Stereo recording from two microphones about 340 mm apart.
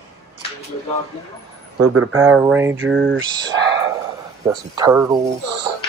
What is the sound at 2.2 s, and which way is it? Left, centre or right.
Speech, centre.